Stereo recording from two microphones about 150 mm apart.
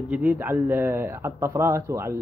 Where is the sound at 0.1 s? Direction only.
10° right (ahead or behind).